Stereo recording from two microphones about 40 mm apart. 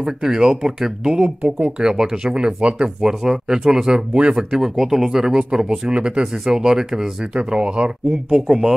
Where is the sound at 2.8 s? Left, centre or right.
Centre.